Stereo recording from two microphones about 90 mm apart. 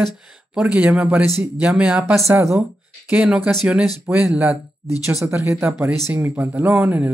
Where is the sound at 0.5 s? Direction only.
15° right (ahead or behind).